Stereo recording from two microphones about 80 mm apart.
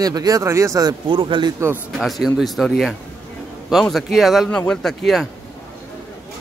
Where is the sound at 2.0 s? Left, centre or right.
Centre.